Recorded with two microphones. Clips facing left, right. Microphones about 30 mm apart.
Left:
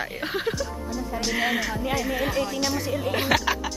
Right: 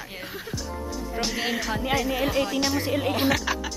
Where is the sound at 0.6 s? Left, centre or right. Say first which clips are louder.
Left 3 dB; centre.